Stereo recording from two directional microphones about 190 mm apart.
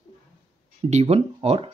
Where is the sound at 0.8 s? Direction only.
35° right (ahead or behind).